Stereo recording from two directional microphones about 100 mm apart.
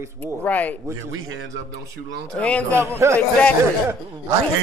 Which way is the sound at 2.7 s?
30° right (ahead or behind).